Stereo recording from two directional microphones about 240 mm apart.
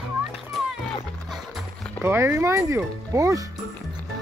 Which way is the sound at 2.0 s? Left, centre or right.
Centre.